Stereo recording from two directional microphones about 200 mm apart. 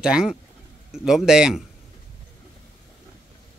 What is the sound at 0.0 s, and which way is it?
Speech, 5° right (ahead or behind).